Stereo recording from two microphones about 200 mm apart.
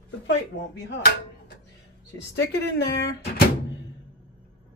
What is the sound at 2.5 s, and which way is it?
Speech, 55° left (ahead or behind).